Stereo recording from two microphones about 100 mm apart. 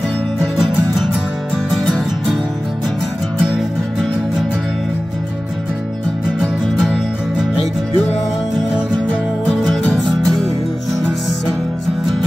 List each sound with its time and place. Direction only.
1.7 s music: centre (ahead or behind)
3.3 s music: 5° right (ahead or behind)
9.7 s music: centre (ahead or behind)